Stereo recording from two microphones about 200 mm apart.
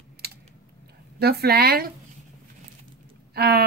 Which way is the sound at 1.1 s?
50° right (ahead or behind).